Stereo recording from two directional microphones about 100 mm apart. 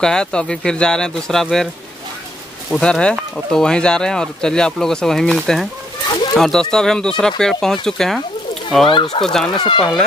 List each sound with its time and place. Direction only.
0.0 s speech: 5° left (ahead or behind)
2.7 s speech: 10° left (ahead or behind)
9.5 s speech: 50° left (ahead or behind)